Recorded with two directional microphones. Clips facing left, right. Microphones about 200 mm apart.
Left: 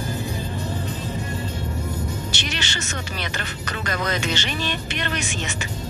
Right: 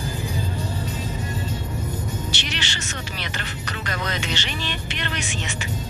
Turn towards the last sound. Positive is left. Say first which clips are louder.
# left 3 dB
turn(degrees=45)  # may be behind; listen again after turning